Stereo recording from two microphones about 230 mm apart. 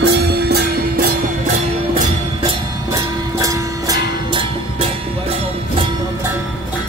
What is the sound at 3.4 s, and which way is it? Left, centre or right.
Music, centre.